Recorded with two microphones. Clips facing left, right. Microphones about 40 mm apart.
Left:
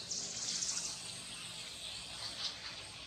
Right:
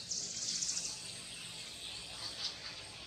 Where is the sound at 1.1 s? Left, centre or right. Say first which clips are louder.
Left 1 dB; centre.